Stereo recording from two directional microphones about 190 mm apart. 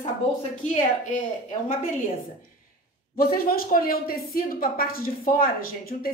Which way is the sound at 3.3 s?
50° left (ahead or behind).